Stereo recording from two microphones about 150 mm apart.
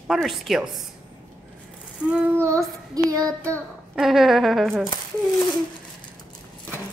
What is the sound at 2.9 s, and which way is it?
Child singing, 25° right (ahead or behind).